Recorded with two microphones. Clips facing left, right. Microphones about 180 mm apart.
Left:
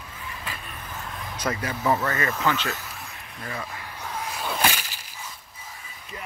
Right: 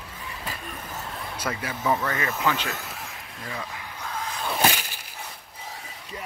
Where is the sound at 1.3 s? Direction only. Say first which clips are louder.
Left 3 dB; 10° right (ahead or behind).